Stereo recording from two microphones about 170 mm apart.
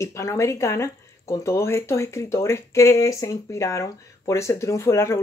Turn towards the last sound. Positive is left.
turn(degrees=15)  # may be behind; listen again after turning